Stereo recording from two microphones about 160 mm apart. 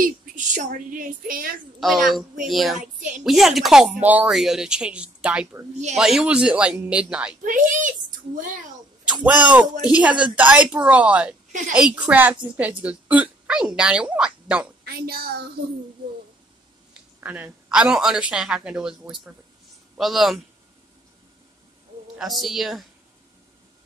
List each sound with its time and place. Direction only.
0.0 s a woman's voice: 55° right (ahead or behind)
1.8 s speech: centre (ahead or behind)
7.4 s speech: 55° right (ahead or behind)
9.1 s speech: 10° right (ahead or behind)
14.9 s speech: 75° right (ahead or behind)
17.2 s speech: 10° right (ahead or behind)
22.2 s speech: centre (ahead or behind)